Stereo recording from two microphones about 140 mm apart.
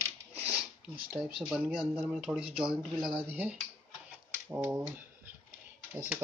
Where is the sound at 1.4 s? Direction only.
5° right (ahead or behind).